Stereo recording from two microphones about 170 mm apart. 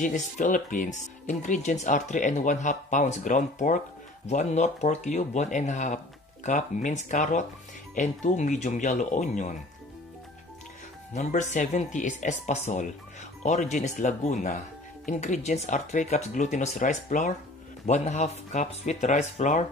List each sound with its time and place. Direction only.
0.0 s speech: 45° left (ahead or behind)
11.1 s speech: 45° left (ahead or behind)